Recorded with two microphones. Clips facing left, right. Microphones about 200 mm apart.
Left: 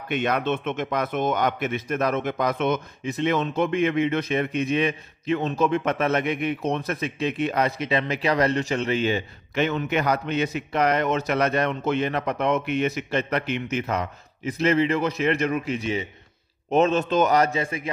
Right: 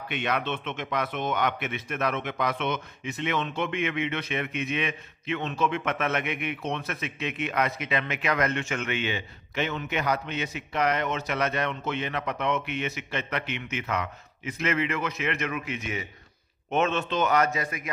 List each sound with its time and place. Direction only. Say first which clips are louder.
0.1 s a man's voice: left 6 dB; 45° left (ahead or behind)